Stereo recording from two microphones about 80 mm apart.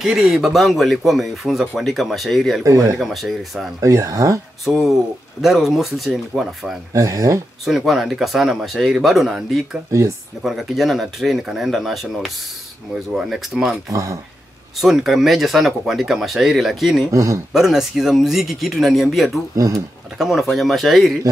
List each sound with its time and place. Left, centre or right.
0.0 s speech: centre
2.6 s speech: right
3.0 s speech: centre
3.8 s speech: right
4.6 s speech: centre
6.9 s speech: right
7.6 s speech: centre
14.8 s speech: centre
17.1 s speech: right
17.5 s speech: centre
19.5 s speech: right
20.2 s speech: centre